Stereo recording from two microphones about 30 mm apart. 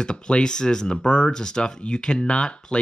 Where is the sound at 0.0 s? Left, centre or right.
Left.